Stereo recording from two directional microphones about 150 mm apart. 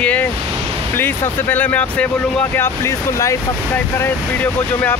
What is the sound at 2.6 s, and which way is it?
Speech, 20° left (ahead or behind).